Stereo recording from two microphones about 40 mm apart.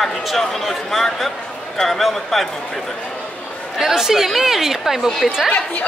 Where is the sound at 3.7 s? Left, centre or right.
Centre.